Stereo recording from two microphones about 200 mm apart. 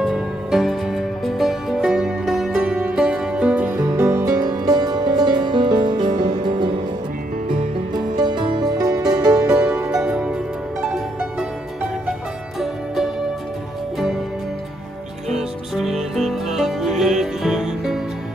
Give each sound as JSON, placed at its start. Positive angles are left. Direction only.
{"t": 0.0, "sound": "music", "side_deg": 0}
{"t": 8.2, "sound": "music", "side_deg": -20}
{"t": 9.4, "sound": "music", "side_deg": -5}
{"t": 15.3, "sound": "music", "side_deg": 0}